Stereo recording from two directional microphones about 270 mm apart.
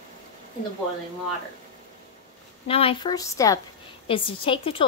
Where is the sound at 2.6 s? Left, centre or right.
Left.